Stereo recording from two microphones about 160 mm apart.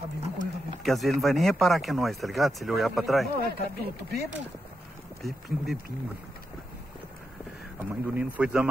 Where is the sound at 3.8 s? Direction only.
90° right.